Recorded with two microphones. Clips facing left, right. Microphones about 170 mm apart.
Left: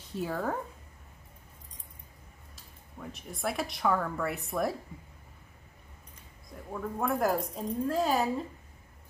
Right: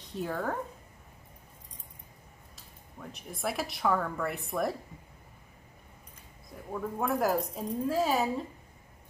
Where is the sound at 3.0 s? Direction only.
Centre (ahead or behind).